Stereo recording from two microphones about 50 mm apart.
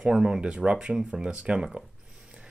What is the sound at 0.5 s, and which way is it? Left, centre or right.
Speech, right.